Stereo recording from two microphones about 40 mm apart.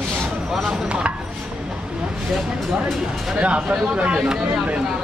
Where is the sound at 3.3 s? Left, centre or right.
Right.